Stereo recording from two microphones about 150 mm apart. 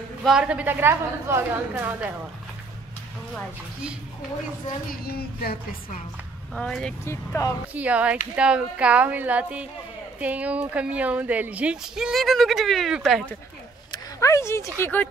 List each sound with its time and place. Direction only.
0.2 s speech: 5° right (ahead or behind)
5.0 s a sound: 90° left
6.5 s speech: 5° left (ahead or behind)
7.1 s speech: 20° left (ahead or behind)
7.7 s speech: 10° right (ahead or behind)
13.9 s speech: 20° left (ahead or behind)